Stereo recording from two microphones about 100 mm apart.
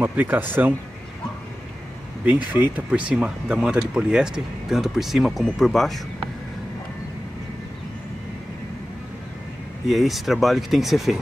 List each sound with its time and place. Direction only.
0.0 s speech: 20° right (ahead or behind)
2.2 s speech: 15° right (ahead or behind); by 5.9 s centre (ahead or behind)
9.8 s speech: centre (ahead or behind)